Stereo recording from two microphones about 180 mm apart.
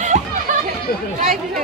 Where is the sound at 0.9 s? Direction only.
55° left (ahead or behind).